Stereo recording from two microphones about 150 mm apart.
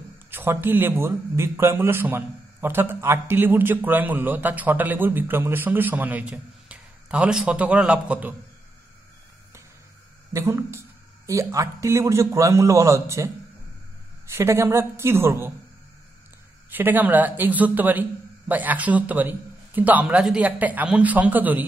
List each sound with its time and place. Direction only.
0.3 s a man's voice: 15° right (ahead or behind)
10.3 s a man's voice: 20° right (ahead or behind)
14.3 s a man's voice: 20° right (ahead or behind)
16.7 s a man's voice: 10° right (ahead or behind)